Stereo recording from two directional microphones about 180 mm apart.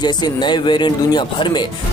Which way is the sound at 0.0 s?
25° left (ahead or behind).